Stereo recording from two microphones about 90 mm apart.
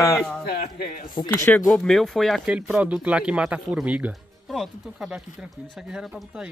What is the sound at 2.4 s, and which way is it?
Speech, 10° right (ahead or behind).